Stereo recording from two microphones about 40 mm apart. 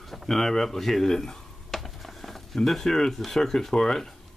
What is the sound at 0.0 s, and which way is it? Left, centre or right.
Speech, centre.